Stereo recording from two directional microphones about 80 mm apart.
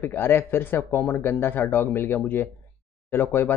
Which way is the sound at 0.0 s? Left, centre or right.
Left.